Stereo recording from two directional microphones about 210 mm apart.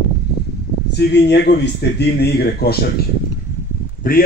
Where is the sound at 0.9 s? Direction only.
50° left (ahead or behind).